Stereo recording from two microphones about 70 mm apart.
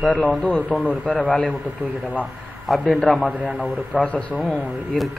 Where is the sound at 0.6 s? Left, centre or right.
Right.